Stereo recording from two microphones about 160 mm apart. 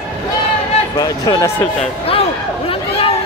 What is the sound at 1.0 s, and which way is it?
Speech, 25° left (ahead or behind).